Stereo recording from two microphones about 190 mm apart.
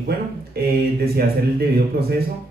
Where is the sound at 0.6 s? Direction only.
55° right (ahead or behind).